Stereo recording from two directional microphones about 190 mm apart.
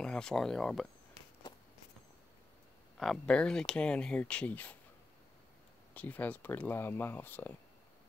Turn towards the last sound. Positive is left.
turn(degrees=10)  # may be behind; listen again after turning